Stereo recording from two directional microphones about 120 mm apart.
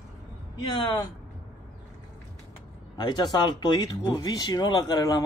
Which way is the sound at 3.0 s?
40° left (ahead or behind).